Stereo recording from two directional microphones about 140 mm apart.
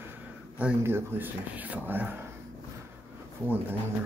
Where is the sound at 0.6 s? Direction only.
15° right (ahead or behind).